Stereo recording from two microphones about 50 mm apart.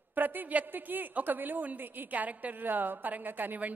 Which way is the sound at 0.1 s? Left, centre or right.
Right.